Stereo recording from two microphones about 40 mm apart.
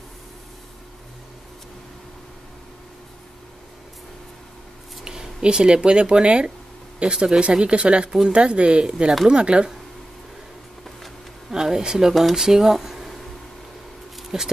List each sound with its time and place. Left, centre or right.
5.0 s speech: centre
11.5 s speech: centre
12.1 s speech: centre
14.3 s speech: centre